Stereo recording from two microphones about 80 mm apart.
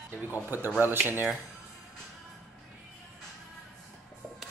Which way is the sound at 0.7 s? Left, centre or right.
Right.